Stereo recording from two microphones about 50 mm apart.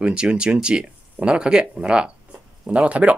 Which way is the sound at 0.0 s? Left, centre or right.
Right.